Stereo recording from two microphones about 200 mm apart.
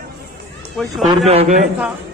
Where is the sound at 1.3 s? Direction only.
35° right (ahead or behind).